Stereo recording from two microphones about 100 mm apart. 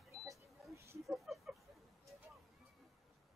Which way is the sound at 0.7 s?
30° right (ahead or behind).